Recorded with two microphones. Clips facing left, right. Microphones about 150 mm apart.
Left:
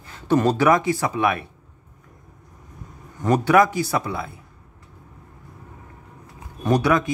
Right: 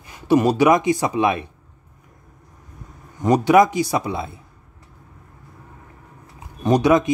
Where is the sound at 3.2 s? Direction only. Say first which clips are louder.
Right 3 dB; 15° right (ahead or behind).